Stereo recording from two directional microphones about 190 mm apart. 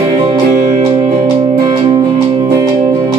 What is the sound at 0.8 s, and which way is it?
Music, 25° right (ahead or behind).